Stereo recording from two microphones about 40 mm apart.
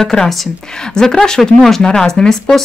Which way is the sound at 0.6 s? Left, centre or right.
Centre.